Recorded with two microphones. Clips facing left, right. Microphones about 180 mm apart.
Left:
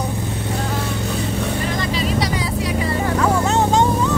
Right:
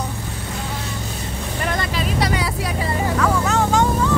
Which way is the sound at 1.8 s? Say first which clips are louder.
Left 1 dB; 55° right (ahead or behind).